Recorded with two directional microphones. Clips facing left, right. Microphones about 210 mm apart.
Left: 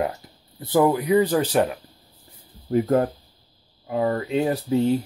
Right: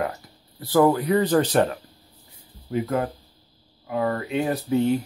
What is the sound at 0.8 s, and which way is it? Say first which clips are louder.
Speech: even; 10° left (ahead or behind).